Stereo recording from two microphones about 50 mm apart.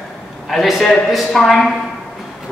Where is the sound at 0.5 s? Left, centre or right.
Centre.